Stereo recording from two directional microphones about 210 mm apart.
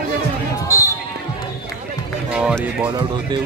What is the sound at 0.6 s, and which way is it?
Basketball bounce, 15° left (ahead or behind).